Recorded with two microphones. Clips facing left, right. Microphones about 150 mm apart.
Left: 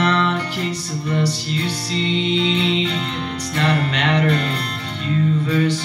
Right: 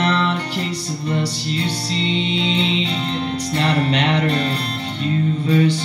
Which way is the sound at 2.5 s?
30° right (ahead or behind).